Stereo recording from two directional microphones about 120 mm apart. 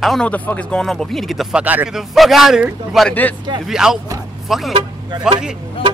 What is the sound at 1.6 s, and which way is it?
Speech, 15° right (ahead or behind).